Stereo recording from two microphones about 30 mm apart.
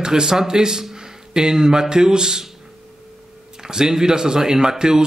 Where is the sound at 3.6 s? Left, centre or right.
Right.